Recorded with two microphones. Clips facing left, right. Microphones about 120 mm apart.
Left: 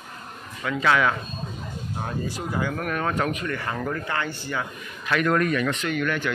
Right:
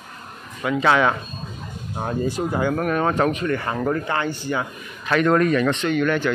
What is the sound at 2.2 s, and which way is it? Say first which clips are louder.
Speech: right 7 dB; 25° right (ahead or behind).